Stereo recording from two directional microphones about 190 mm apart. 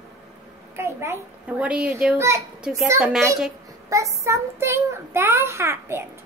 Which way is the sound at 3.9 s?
15° right (ahead or behind).